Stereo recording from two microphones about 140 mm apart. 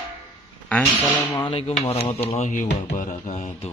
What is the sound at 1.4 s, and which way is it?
Speech, 40° left (ahead or behind).